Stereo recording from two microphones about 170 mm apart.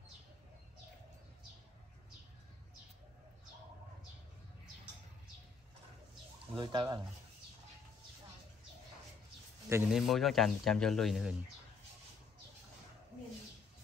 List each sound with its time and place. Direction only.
6.5 s speech: 25° right (ahead or behind)
9.8 s speech: centre (ahead or behind)